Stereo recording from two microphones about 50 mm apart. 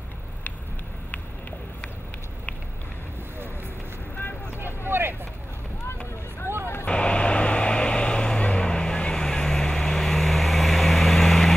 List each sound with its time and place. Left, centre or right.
4.6 s vehicle: right
6.9 s vehicle: left; by 11.5 s centre